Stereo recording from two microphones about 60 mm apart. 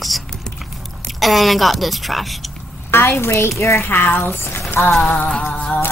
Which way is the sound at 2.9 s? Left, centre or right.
Left.